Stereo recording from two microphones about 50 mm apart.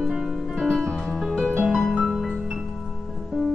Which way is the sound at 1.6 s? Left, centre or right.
Centre.